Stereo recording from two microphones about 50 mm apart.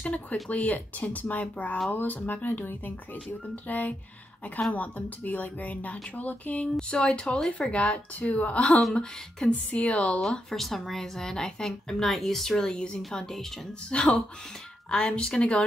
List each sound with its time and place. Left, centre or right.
0.0 s speech: left
6.8 s speech: centre
10.5 s a woman's voice: centre; by 15.6 s left